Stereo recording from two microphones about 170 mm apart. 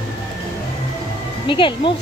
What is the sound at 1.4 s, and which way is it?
Speech, 30° left (ahead or behind).